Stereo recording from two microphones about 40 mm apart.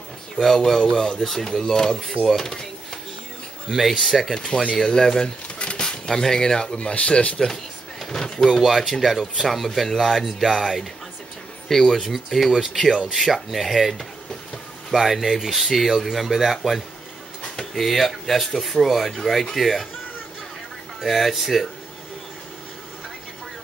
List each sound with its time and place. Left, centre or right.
0.6 s speech: centre
3.6 s speech: centre
4.7 s speech: centre; by 7.3 s left
8.0 s speech: centre
21.0 s speech: centre